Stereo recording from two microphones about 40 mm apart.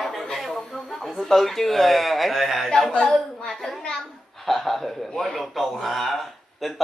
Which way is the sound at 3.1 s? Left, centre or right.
Centre.